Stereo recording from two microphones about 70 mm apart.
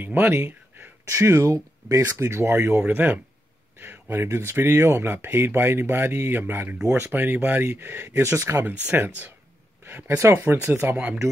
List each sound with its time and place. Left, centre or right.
0.0 s speech: right
1.0 s speech: right
2.8 s speech: right
8.2 s speech: right
8.8 s speech: right
10.1 s speech: right
10.8 s speech: right